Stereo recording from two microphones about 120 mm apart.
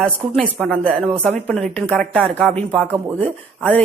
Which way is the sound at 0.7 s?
5° left (ahead or behind).